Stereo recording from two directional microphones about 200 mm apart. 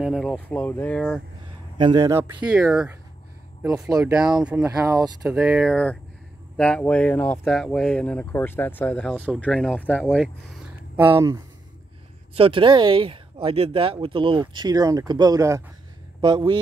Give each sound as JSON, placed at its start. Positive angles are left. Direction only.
{"t": 0.0, "sound": "speech", "side_deg": 0}
{"t": 1.8, "sound": "speech", "side_deg": -20}
{"t": 4.4, "sound": "speech", "side_deg": -5}
{"t": 4.8, "sound": "speech", "side_deg": -20}
{"t": 5.2, "sound": "speech", "side_deg": -5}
{"t": 11.0, "sound": "speech", "side_deg": -10}
{"t": 12.4, "sound": "speech", "side_deg": -25}